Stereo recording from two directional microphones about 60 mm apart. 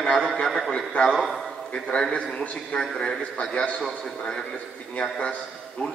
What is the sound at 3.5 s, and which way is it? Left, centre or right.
A man's voice, left.